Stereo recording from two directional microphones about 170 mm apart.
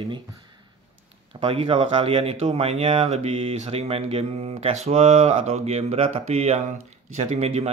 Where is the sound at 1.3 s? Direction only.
35° right (ahead or behind).